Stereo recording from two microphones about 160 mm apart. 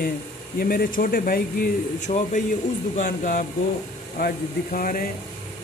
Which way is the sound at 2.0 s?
50° left (ahead or behind).